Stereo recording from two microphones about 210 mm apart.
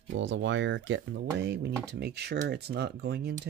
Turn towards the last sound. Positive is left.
turn(degrees=-50)  # may be behind; listen again after turning